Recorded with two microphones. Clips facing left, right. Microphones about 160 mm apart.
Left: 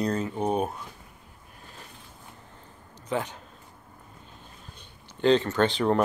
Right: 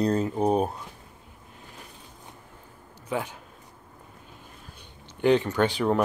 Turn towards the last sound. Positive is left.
turn(degrees=-5)  # may be behind; listen again after turning